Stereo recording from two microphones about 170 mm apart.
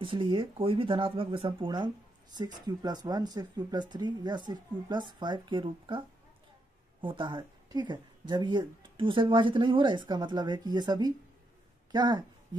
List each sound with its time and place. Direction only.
0.0 s speech: 30° right (ahead or behind)